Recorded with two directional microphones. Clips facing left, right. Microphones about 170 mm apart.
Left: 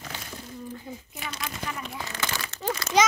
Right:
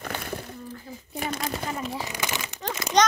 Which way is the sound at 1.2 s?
45° right (ahead or behind).